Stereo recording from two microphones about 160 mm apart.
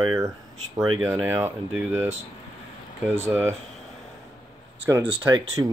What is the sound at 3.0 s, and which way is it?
Speech, 15° right (ahead or behind).